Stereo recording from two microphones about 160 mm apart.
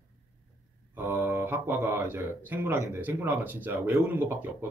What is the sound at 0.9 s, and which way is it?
Speech, 15° right (ahead or behind).